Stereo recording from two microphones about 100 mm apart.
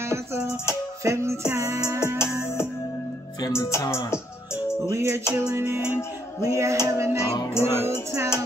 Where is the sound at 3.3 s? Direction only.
35° left (ahead or behind).